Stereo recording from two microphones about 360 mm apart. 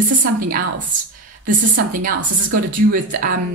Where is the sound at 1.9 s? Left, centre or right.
Right.